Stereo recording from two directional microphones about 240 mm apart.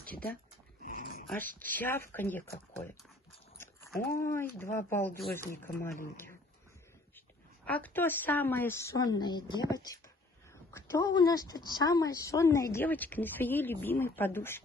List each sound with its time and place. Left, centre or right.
0.8 s dog: left
1.6 s a woman's voice: centre
3.5 s a woman's voice: centre
7.6 s a woman's voice: centre